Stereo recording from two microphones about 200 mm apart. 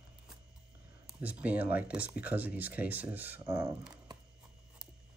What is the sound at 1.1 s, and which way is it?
Speech, 5° right (ahead or behind).